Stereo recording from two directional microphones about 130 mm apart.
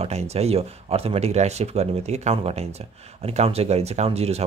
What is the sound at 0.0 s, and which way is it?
Speech, 55° right (ahead or behind).